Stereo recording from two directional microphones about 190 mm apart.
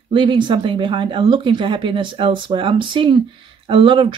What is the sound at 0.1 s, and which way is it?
Speech, 25° right (ahead or behind).